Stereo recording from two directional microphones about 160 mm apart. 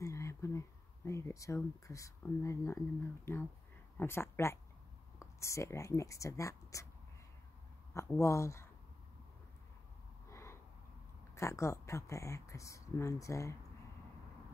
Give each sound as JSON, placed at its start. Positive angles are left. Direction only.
{"t": 0.0, "sound": "speech", "side_deg": 20}
{"t": 7.9, "sound": "speech", "side_deg": 15}
{"t": 10.3, "sound": "owl", "side_deg": 15}
{"t": 11.3, "sound": "speech", "side_deg": 20}